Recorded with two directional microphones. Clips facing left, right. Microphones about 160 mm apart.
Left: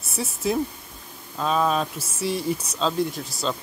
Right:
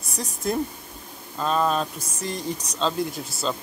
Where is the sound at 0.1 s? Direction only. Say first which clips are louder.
Left 2 dB; 5° left (ahead or behind).